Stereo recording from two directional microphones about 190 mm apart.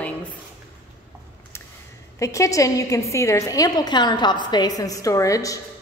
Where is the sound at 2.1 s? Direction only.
15° left (ahead or behind).